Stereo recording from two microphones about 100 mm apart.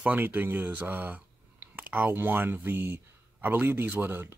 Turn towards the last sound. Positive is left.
turn(degrees=-25)  # may be behind; listen again after turning